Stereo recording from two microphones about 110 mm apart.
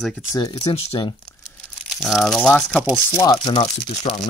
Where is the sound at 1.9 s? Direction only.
5° right (ahead or behind).